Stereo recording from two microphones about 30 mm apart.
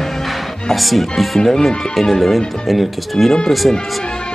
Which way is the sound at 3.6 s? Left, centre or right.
Centre.